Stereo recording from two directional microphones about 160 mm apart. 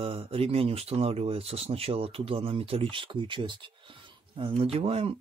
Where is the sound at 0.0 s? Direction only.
35° right (ahead or behind).